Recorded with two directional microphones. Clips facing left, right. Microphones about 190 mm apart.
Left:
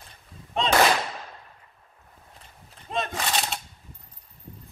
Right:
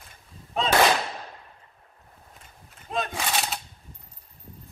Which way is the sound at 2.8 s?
Centre (ahead or behind).